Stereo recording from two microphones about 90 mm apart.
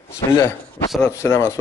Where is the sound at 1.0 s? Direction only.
30° left (ahead or behind).